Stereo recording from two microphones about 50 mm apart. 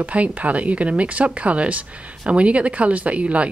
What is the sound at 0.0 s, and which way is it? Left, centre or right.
A woman's voice, right.